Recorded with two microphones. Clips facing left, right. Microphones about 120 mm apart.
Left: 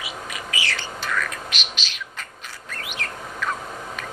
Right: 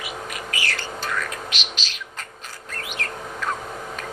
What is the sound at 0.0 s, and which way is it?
Bird, 50° right (ahead or behind).